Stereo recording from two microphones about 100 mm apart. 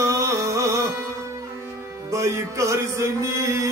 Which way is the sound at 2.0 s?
30° right (ahead or behind).